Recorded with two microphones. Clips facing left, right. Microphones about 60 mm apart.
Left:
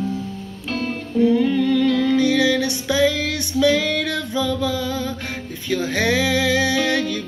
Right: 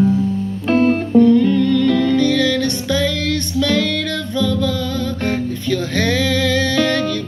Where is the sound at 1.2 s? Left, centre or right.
Centre.